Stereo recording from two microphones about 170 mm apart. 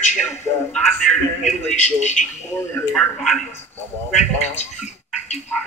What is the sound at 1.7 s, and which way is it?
Speech, 45° left (ahead or behind).